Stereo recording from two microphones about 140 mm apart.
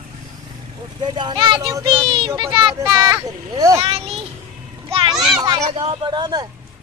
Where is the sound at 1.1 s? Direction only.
35° right (ahead or behind).